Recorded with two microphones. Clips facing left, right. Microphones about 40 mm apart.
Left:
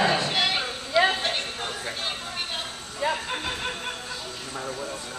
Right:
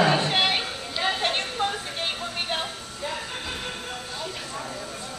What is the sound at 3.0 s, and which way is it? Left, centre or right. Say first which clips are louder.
Music: left 6 dB; left.